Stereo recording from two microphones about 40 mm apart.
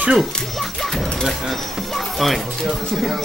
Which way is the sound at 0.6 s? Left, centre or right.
Centre.